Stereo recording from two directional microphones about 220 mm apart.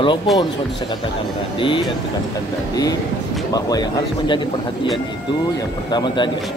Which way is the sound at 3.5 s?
20° left (ahead or behind).